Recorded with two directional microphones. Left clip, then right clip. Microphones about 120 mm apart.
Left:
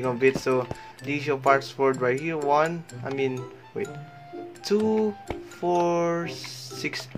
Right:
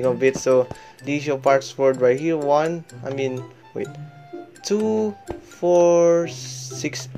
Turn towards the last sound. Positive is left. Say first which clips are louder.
# right 3 dB
turn(degrees=-35)  # may be behind; listen again after turning